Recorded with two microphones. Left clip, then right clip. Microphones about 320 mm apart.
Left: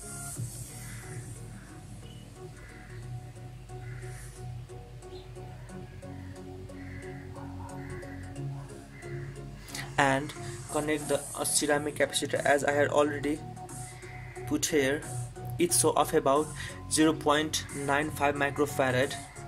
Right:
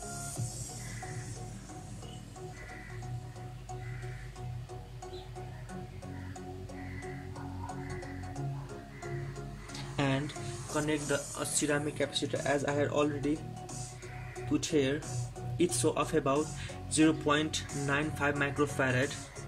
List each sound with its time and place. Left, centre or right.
9.7 s speech: left
14.5 s speech: left